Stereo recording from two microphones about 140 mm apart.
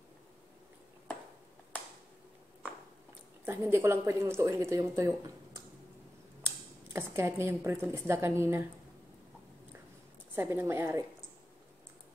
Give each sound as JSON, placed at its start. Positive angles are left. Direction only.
{"t": 3.4, "sound": "a woman's voice", "side_deg": -15}
{"t": 6.4, "sound": "a sound", "side_deg": -15}
{"t": 7.9, "sound": "a woman's voice", "side_deg": -20}
{"t": 10.3, "sound": "a woman's voice", "side_deg": -15}